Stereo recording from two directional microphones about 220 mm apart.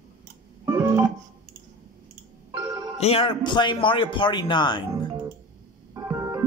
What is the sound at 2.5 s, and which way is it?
Music, 15° right (ahead or behind).